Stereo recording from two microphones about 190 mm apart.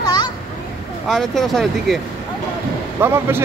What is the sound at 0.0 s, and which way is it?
Children playing, 20° left (ahead or behind).